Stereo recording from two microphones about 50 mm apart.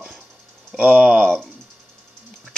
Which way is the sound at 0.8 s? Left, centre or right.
Right.